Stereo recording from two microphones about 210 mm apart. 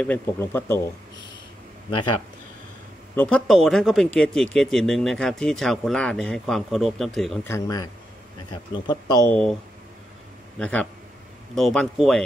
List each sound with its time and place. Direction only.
0.0 s speech: 10° left (ahead or behind)
3.2 s speech: 5° left (ahead or behind)
7.4 s speech: 15° left (ahead or behind)
9.3 s speech: 5° left (ahead or behind)
10.6 s speech: 5° left (ahead or behind)